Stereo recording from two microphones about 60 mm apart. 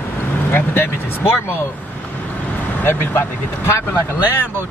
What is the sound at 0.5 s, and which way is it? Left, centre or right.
Speech, left.